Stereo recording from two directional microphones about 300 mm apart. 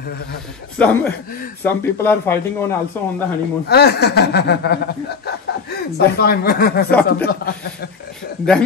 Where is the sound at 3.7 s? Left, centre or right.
Left.